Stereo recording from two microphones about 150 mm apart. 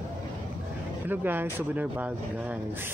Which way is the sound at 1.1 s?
10° right (ahead or behind).